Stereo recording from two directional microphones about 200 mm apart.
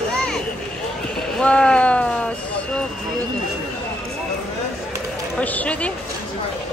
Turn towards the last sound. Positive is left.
turn(degrees=5)  # may be behind; listen again after turning